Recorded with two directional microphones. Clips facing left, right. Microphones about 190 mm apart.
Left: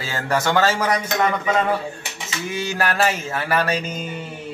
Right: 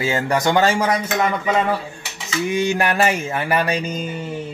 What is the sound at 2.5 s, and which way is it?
Speech, 15° right (ahead or behind).